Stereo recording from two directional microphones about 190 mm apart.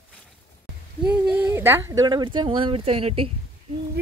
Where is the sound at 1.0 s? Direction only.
5° right (ahead or behind); by 3.3 s 30° right (ahead or behind).